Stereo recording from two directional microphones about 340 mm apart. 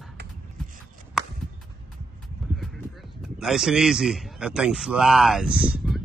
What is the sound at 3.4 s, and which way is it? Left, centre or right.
A man's voice, centre.